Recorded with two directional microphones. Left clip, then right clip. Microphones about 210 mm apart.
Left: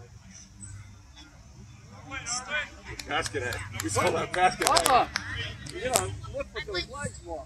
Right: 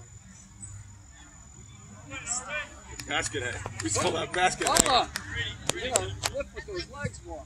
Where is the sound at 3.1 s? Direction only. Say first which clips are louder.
Even; 25° left (ahead or behind).